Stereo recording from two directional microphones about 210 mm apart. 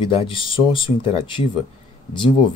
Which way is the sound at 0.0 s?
25° left (ahead or behind).